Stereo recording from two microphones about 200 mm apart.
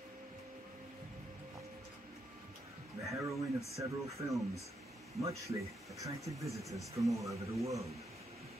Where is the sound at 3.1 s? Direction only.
15° right (ahead or behind).